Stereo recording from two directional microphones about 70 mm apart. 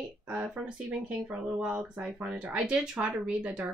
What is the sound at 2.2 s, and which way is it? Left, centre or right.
Speech, centre.